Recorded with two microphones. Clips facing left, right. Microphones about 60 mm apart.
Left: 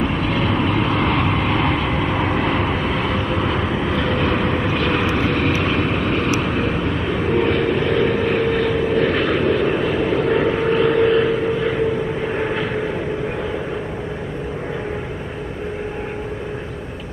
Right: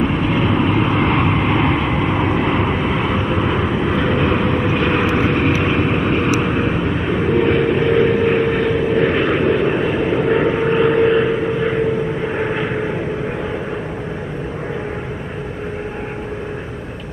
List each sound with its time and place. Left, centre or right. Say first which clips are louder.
0.0 s vehicle: right 3 dB; centre